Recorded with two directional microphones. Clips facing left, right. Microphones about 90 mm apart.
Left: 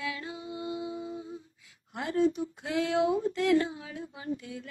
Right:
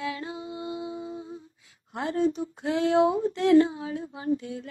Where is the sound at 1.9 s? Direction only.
30° right (ahead or behind).